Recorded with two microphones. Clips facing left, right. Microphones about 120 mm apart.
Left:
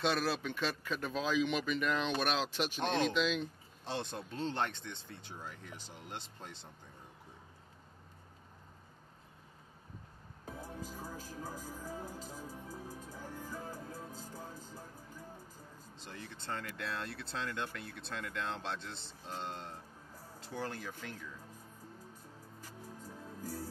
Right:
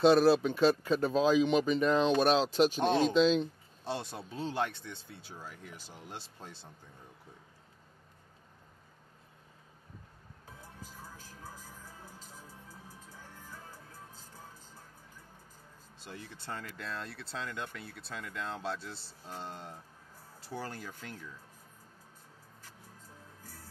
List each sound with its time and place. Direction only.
0.0 s speech: 35° right (ahead or behind)
3.8 s speech: 5° right (ahead or behind)
11.4 s music: 45° left (ahead or behind)
16.0 s speech: 10° right (ahead or behind)
16.6 s speech: centre (ahead or behind)
20.4 s speech: 10° right (ahead or behind)